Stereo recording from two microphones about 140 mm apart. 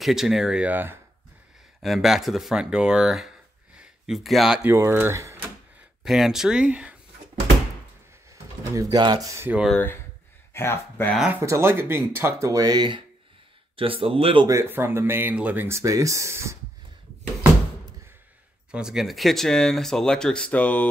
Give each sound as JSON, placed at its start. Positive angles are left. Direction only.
{"t": 0.0, "sound": "speech", "side_deg": 0}
{"t": 1.8, "sound": "speech", "side_deg": 0}
{"t": 3.7, "sound": "a sound", "side_deg": -5}
{"t": 4.6, "sound": "speech", "side_deg": -15}
{"t": 6.0, "sound": "speech", "side_deg": 0}
{"t": 8.3, "sound": "a sound", "side_deg": -20}
{"t": 9.0, "sound": "speech", "side_deg": -30}
{"t": 9.5, "sound": "speech", "side_deg": -5}
{"t": 10.5, "sound": "speech", "side_deg": 20}
{"t": 11.4, "sound": "speech", "side_deg": -20}
{"t": 14.5, "sound": "speech", "side_deg": -15}
{"t": 18.7, "sound": "speech", "side_deg": -5}